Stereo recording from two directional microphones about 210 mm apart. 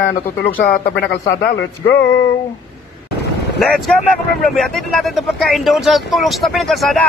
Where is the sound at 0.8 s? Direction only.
55° left (ahead or behind).